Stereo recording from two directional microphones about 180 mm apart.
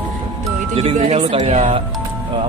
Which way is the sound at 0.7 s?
35° right (ahead or behind).